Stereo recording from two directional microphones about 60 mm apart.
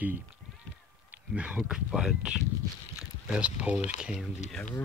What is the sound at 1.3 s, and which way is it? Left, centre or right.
Speech, centre.